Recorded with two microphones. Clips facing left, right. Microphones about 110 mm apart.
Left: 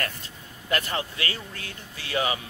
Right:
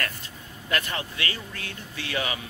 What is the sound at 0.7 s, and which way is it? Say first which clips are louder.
Speech: left 1 dB; 30° left (ahead or behind).